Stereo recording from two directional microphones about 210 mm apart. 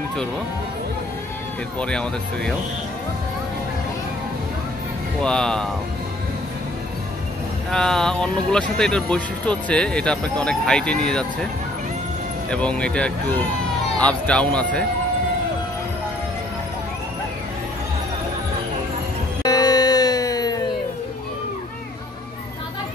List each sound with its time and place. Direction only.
1.8 s speech: 5° left (ahead or behind)
5.2 s speech: 5° left (ahead or behind)
7.7 s speech: 5° left (ahead or behind)
12.4 s speech: 5° left (ahead or behind)
19.4 s music: 20° left (ahead or behind)